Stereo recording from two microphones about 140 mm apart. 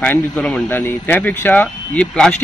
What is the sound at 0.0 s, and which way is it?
Speech, 10° left (ahead or behind).